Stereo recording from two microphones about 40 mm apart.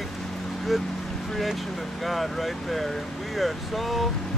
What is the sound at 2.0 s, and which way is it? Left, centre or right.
Speech, centre.